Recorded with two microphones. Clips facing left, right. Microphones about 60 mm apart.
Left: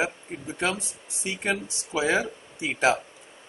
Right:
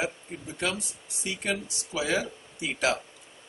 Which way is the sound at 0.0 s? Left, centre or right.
Left.